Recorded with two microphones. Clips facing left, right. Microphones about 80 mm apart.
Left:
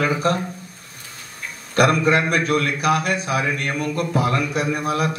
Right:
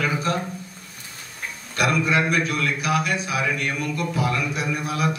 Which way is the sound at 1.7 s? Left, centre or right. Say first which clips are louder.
Left 5 dB; left.